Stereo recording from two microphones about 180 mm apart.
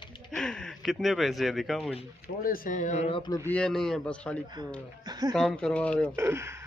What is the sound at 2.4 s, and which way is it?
Speech, 50° left (ahead or behind).